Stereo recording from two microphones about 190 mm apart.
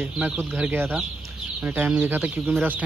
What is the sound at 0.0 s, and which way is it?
Speech, 10° right (ahead or behind).